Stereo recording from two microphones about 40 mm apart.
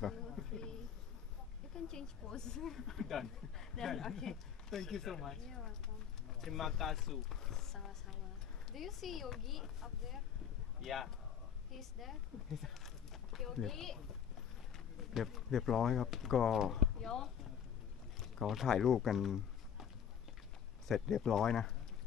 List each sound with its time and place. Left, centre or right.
0.0 s a sound: centre
1.9 s speech: centre
15.1 s speech: centre
18.7 s speech: centre
20.9 s speech: centre